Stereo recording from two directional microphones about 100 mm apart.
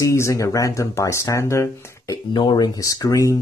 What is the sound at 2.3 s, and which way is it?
Speech, 50° left (ahead or behind).